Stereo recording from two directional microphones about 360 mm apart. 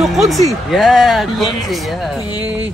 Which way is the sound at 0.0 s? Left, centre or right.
Centre.